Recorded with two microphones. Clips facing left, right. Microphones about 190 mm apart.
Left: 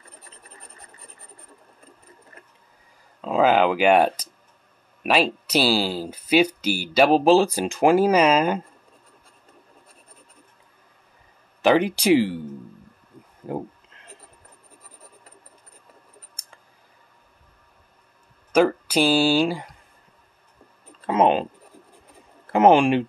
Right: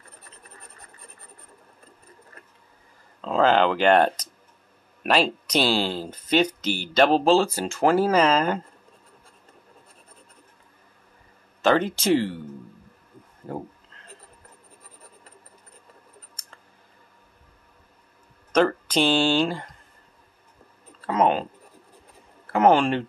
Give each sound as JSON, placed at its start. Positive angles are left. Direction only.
{"t": 3.2, "sound": "speech", "side_deg": 10}
{"t": 11.6, "sound": "speech", "side_deg": 15}
{"t": 18.5, "sound": "speech", "side_deg": 10}
{"t": 21.0, "sound": "speech", "side_deg": 20}
{"t": 22.5, "sound": "speech", "side_deg": 20}